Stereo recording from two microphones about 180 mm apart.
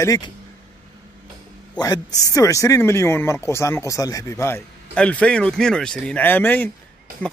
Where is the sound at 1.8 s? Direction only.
20° left (ahead or behind).